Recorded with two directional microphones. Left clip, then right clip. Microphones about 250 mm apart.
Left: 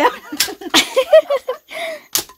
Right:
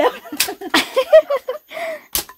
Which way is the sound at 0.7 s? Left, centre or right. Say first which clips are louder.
Left 1 dB; centre.